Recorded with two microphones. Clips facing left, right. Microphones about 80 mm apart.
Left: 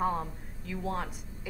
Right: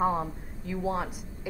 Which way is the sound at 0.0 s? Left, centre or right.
Centre.